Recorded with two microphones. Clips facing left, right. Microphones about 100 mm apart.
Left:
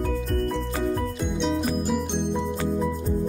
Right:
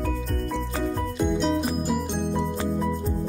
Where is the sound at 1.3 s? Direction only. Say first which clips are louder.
Right 1 dB; centre (ahead or behind).